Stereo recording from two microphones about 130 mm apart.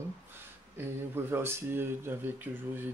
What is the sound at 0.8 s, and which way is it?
Speech, 20° right (ahead or behind).